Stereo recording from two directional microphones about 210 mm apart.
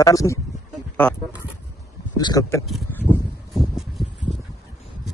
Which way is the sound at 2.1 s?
15° left (ahead or behind).